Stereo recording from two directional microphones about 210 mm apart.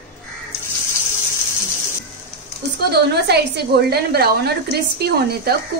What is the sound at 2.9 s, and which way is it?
A woman's voice, 50° right (ahead or behind).